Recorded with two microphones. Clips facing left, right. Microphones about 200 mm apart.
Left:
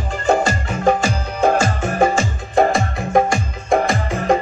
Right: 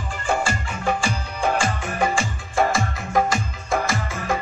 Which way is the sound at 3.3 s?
50° left (ahead or behind).